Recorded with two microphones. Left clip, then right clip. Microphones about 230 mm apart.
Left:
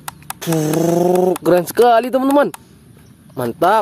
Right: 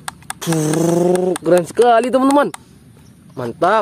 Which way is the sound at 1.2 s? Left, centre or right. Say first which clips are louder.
Even; centre.